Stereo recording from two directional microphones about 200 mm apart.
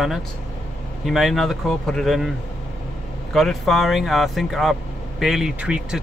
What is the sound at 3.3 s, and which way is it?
Speech, centre (ahead or behind).